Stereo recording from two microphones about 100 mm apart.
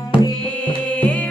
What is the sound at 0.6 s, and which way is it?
Music, 15° left (ahead or behind).